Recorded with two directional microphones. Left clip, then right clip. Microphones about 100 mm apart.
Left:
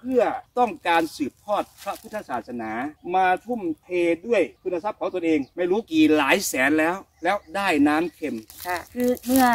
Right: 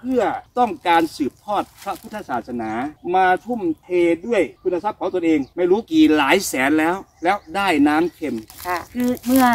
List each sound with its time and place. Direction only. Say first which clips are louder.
0.1 s speech: right 1 dB; 20° left (ahead or behind)